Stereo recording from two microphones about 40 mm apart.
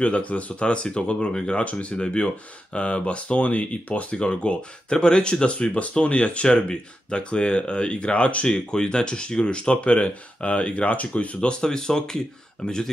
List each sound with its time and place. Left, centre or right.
0.0 s speech: left
1.6 s speech: left
8.5 s speech: left
11.6 s speech: centre